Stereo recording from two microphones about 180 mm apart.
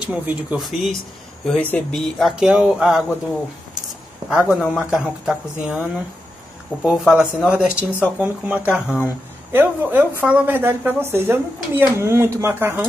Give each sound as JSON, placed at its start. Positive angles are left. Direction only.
{"t": 0.0, "sound": "speech", "side_deg": -10}
{"t": 4.3, "sound": "speech", "side_deg": -5}